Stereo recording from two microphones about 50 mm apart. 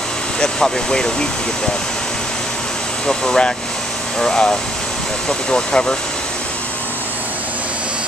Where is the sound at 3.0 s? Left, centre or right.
Centre.